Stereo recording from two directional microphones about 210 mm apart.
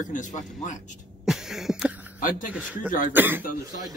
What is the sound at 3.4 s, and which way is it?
Speech, 40° left (ahead or behind).